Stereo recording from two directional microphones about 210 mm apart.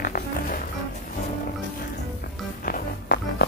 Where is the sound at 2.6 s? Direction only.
45° left (ahead or behind).